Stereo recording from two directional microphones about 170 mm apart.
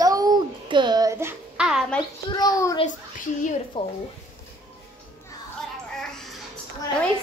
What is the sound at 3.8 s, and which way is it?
Speech, 30° left (ahead or behind).